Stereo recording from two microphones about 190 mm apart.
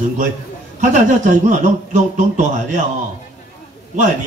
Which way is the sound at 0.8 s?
40° right (ahead or behind).